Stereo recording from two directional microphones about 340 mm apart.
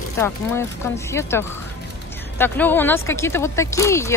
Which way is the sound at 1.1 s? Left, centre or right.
Centre.